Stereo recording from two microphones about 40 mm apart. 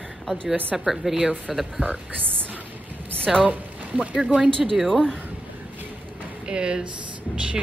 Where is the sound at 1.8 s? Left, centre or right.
Right.